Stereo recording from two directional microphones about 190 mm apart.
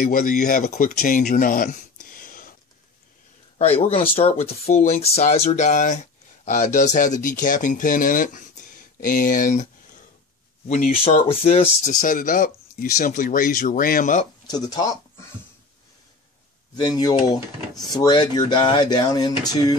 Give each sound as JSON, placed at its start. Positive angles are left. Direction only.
{"t": 0.0, "sound": "speech", "side_deg": 45}
{"t": 3.5, "sound": "speech", "side_deg": 35}
{"t": 10.7, "sound": "speech", "side_deg": 35}
{"t": 14.5, "sound": "speech", "side_deg": 20}
{"t": 16.7, "sound": "speech", "side_deg": 20}